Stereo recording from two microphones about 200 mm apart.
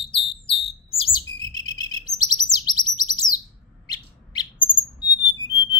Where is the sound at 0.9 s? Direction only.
25° left (ahead or behind).